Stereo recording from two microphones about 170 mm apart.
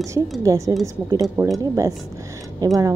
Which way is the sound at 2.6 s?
20° right (ahead or behind).